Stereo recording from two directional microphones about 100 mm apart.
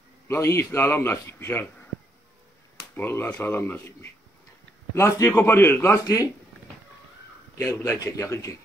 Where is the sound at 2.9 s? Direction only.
20° left (ahead or behind).